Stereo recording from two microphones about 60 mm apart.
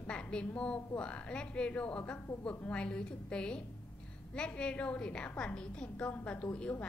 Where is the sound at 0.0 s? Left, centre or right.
Centre.